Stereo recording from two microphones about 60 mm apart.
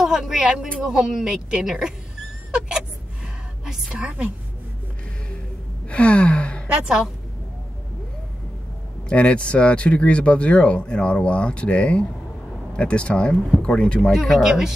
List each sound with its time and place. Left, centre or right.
0.0 s a woman's voice: centre
4.0 s a woman's voice: centre
5.9 s gasp: left
6.7 s speech: centre
9.1 s speech: centre
14.2 s speech: centre